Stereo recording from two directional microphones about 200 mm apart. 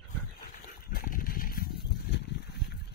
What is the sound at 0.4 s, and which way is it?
Vehicle, 45° left (ahead or behind).